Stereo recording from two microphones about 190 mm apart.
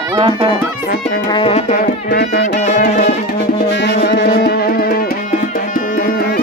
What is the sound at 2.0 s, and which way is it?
Music, 60° left (ahead or behind).